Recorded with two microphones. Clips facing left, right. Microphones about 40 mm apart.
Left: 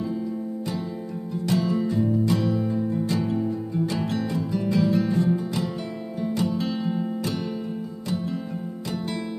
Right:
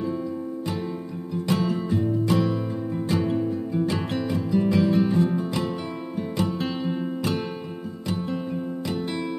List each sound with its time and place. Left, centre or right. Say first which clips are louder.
1.4 s music: left 1 dB; right